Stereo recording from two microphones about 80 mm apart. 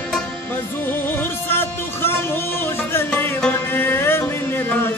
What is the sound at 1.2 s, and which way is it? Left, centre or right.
Music, left.